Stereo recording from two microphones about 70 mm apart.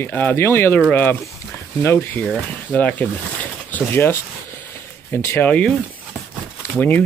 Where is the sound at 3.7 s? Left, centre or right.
Left.